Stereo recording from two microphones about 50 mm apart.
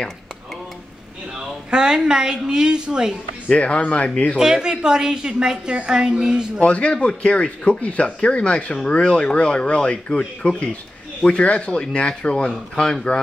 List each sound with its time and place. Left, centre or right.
1.7 s a woman's voice: centre
3.4 s speech: left
4.4 s a woman's voice: centre
6.6 s speech: left